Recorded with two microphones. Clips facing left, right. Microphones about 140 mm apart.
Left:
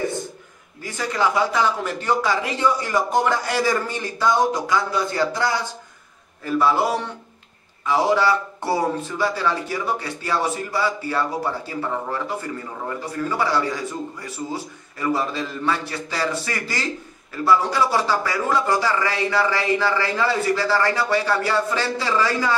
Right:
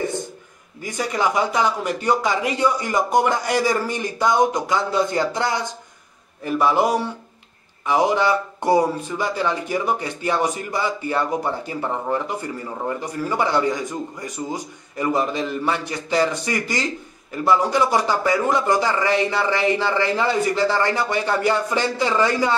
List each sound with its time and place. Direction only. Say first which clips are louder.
0.8 s speech: even; 15° right (ahead or behind)